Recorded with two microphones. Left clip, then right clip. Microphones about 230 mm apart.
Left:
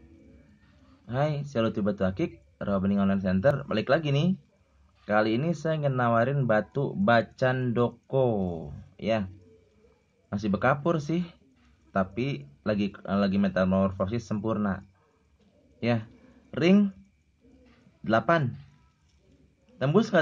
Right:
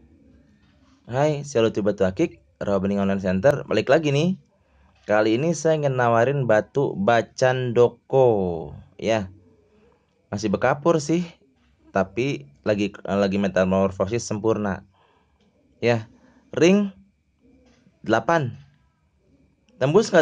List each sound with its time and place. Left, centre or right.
1.0 s speech: centre
10.3 s speech: centre
18.0 s speech: centre
19.8 s speech: centre